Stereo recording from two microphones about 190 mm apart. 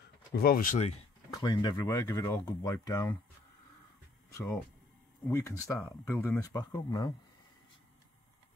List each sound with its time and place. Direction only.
0.3 s speech: 50° left (ahead or behind)
1.3 s speech: 20° left (ahead or behind)
5.3 s speech: 15° left (ahead or behind)